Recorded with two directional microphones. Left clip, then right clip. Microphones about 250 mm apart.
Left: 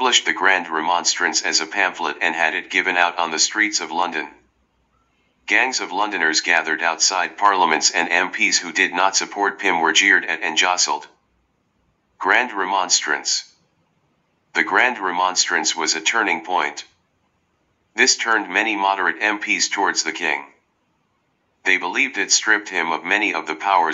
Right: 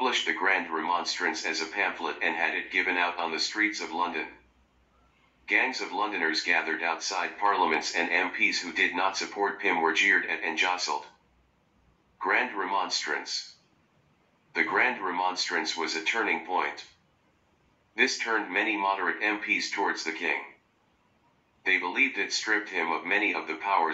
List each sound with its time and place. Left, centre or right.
0.0 s speech: left
5.4 s speech: left
12.2 s speech: left
14.5 s speech: left
17.9 s speech: left
21.6 s speech: left